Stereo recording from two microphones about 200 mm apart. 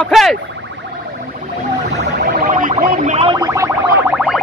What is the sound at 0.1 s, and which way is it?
Speech, centre (ahead or behind).